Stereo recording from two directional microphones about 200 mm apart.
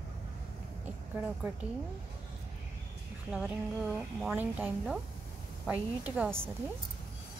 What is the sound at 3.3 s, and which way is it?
A woman's voice, 5° right (ahead or behind).